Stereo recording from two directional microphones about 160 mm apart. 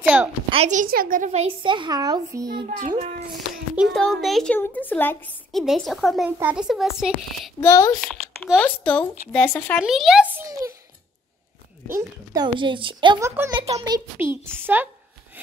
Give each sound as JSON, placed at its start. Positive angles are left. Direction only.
{"t": 0.0, "sound": "a woman's voice", "side_deg": -10}
{"t": 0.5, "sound": "a woman's voice", "side_deg": -45}
{"t": 1.3, "sound": "a child's voice", "side_deg": -35}
{"t": 3.3, "sound": "a child's voice", "side_deg": 0}
{"t": 5.5, "sound": "a child's voice", "side_deg": 0}
{"t": 7.6, "sound": "a child's voice", "side_deg": 20}
{"t": 8.0, "sound": "a child's voice", "side_deg": 5}
{"t": 9.8, "sound": "a child's voice", "side_deg": -5}
{"t": 10.3, "sound": "a sound", "side_deg": -20}
{"t": 11.9, "sound": "speech", "side_deg": -25}
{"t": 13.2, "sound": "a woman's voice", "side_deg": -20}
{"t": 13.6, "sound": "speech", "side_deg": -40}
{"t": 14.4, "sound": "a woman's voice", "side_deg": -15}